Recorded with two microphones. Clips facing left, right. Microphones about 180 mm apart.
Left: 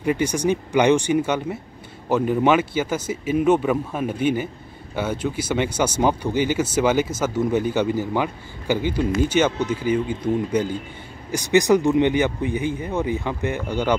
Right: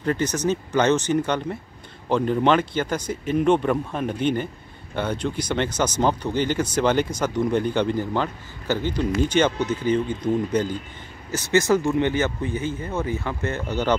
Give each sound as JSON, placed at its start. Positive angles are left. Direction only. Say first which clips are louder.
{"t": 0.0, "sound": "speech", "louder": "left 2 dB", "side_deg": 10}